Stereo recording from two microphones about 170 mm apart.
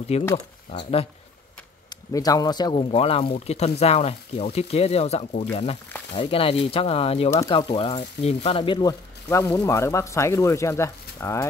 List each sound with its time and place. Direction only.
0.1 s speech: 40° left (ahead or behind)
2.1 s speech: 20° left (ahead or behind)